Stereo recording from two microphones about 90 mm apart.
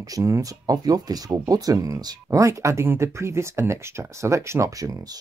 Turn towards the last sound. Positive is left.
turn(degrees=-40)  # may be behind; listen again after turning